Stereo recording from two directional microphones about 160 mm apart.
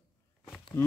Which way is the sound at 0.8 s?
15° left (ahead or behind).